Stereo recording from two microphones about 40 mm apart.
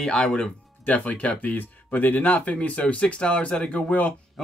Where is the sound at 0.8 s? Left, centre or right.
Left.